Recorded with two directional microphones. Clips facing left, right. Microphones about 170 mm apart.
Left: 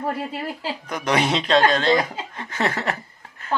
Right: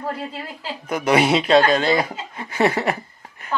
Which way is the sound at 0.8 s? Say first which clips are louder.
Right 5 dB; 5° right (ahead or behind).